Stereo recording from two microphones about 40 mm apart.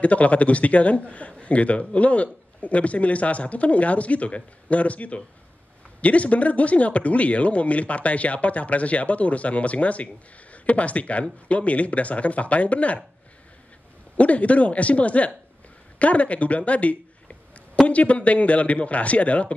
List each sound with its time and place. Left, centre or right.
0.0 s speech: left
14.1 s speech: left